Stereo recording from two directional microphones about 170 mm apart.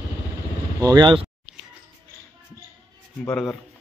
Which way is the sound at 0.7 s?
20° right (ahead or behind).